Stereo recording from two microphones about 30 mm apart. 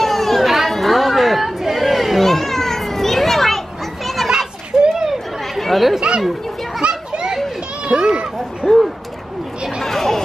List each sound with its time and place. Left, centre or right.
0.0 s chatter: centre
1.8 s children playing: centre
4.7 s chatter: centre
5.6 s chatter: centre
5.9 s chatter: right
6.9 s children playing: right
8.6 s a sound: centre
9.8 s chatter: centre